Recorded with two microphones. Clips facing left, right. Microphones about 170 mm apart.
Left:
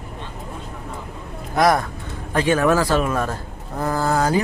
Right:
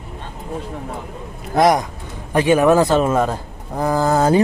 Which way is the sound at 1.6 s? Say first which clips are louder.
Right 3 dB; 20° right (ahead or behind).